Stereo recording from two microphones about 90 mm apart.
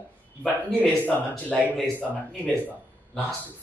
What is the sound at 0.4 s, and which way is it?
Speech, 10° left (ahead or behind).